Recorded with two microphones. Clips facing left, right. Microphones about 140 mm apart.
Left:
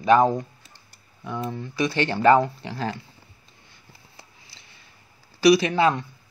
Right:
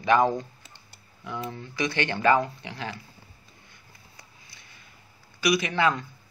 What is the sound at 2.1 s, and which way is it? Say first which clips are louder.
Speech: left 5 dB; 30° left (ahead or behind).